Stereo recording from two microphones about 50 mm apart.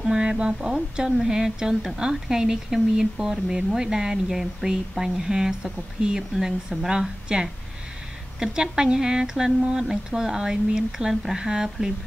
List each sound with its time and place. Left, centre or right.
0.0 s speech: centre
6.9 s speech: centre